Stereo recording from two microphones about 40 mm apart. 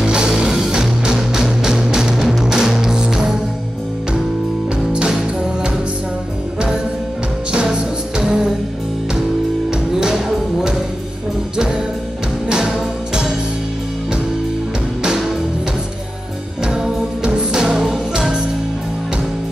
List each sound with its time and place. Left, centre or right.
0.0 s music: right
7.5 s music: centre
9.7 s music: centre
16.6 s music: centre